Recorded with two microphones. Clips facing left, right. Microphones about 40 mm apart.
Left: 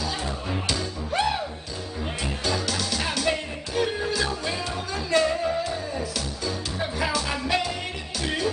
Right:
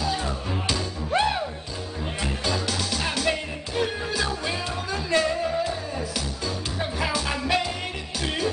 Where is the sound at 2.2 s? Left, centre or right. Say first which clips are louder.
Right 1 dB; centre.